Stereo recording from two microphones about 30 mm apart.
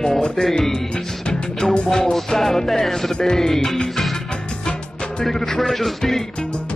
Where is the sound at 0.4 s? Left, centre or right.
Centre.